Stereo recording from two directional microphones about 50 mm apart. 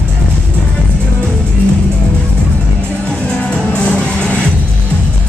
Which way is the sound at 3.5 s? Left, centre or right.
Left.